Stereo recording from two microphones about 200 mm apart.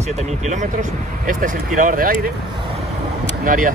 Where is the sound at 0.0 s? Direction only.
35° right (ahead or behind).